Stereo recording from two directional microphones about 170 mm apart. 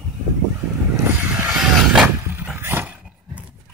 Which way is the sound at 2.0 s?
10° right (ahead or behind).